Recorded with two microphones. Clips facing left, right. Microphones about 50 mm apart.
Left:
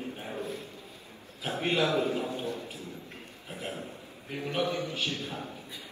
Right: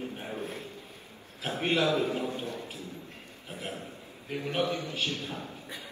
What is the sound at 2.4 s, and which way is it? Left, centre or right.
Speech, right.